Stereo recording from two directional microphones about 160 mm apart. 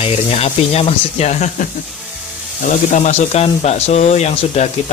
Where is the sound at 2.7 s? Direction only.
45° left (ahead or behind).